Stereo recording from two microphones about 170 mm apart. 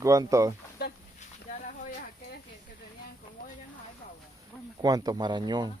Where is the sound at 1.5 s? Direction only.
50° left (ahead or behind).